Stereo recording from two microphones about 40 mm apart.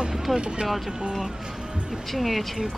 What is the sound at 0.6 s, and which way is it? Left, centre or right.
Speech, centre.